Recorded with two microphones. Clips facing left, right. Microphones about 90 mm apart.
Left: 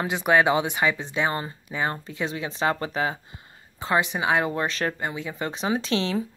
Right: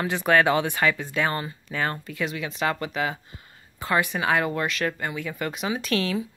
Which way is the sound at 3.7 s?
20° left (ahead or behind).